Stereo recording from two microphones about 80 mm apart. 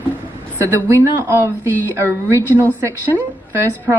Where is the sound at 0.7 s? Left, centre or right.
Right.